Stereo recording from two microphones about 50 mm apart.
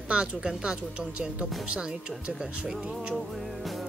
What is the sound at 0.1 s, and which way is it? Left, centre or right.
Speech, right.